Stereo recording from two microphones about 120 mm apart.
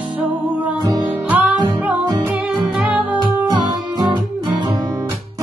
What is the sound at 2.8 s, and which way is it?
Music, 10° right (ahead or behind).